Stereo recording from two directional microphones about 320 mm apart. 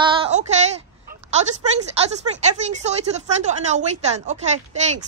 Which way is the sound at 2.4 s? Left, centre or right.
Right.